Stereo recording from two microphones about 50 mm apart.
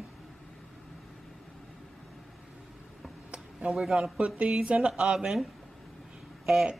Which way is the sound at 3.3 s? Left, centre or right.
Centre.